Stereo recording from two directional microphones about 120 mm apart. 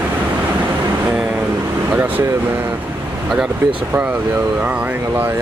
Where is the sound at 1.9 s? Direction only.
15° right (ahead or behind).